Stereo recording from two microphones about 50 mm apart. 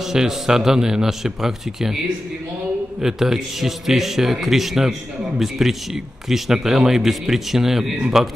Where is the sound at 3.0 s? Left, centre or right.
Centre.